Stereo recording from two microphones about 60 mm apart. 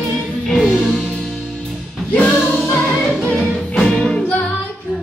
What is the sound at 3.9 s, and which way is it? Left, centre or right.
Music, centre.